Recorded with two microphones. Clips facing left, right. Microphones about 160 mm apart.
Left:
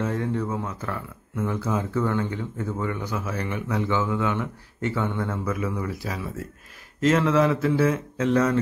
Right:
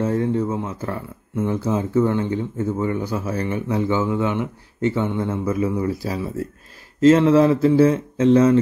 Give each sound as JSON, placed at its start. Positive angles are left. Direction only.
{"t": 0.0, "sound": "speech", "side_deg": -30}